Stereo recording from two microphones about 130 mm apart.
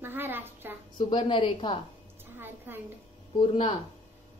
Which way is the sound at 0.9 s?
40° left (ahead or behind).